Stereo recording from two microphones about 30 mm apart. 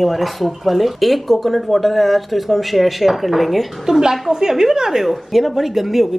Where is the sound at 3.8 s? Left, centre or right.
Centre.